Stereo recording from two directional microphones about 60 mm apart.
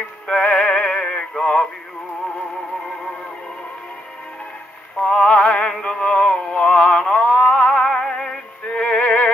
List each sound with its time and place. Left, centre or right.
0.3 s music: centre
0.6 s synthetic singing: centre
5.0 s music: centre
6.9 s a sound: centre
7.4 s music: centre